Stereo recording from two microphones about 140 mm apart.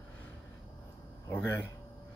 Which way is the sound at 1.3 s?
15° left (ahead or behind).